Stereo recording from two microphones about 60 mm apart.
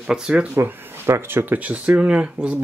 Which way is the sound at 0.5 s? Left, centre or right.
Right.